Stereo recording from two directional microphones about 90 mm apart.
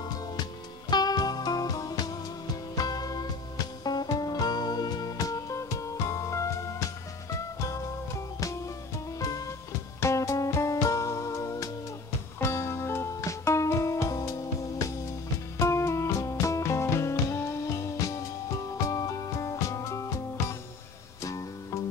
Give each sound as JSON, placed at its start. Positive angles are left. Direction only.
{"t": 0.8, "sound": "music", "side_deg": 50}
{"t": 9.9, "sound": "music", "side_deg": 35}
{"t": 15.6, "sound": "music", "side_deg": 35}